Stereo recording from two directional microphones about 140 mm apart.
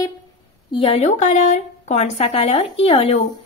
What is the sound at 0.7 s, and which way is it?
A woman's voice, 40° left (ahead or behind).